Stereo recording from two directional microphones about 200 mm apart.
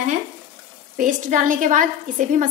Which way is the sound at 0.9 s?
40° right (ahead or behind).